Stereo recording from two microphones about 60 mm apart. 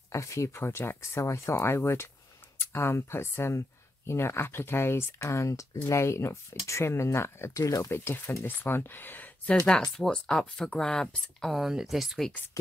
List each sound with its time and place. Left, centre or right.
0.1 s speech: left
7.5 s speech: left
7.9 s speech: left
8.5 s speech: left
9.7 s speech: centre
11.5 s speech: centre